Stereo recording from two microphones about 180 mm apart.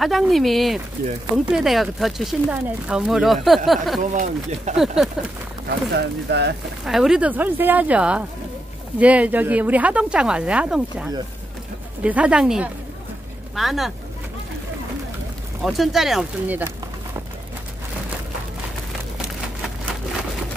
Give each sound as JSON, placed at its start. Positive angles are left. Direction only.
{"t": 0.0, "sound": "speech", "side_deg": 0}
{"t": 1.0, "sound": "speech", "side_deg": -55}
{"t": 1.5, "sound": "speech", "side_deg": 0}
{"t": 4.0, "sound": "speech", "side_deg": -45}
{"t": 4.7, "sound": "speech", "side_deg": 0}
{"t": 5.9, "sound": "speech", "side_deg": -70}
{"t": 6.8, "sound": "speech", "side_deg": 0}
{"t": 15.6, "sound": "speech", "side_deg": 0}